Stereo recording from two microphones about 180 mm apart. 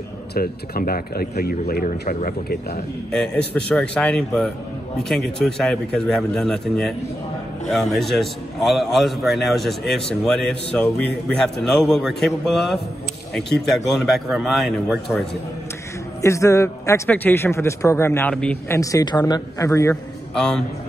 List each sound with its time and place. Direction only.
0.3 s speech: 55° left (ahead or behind)
3.1 s a man's voice: 5° left (ahead or behind)
16.2 s a man's voice: 15° left (ahead or behind)
18.8 s speech: 20° left (ahead or behind)
20.3 s a man's voice: centre (ahead or behind)